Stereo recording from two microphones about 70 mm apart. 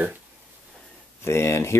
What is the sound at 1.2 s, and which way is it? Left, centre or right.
Speech, left.